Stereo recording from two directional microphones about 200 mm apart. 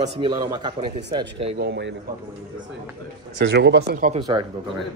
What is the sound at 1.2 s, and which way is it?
Speech, 60° right (ahead or behind).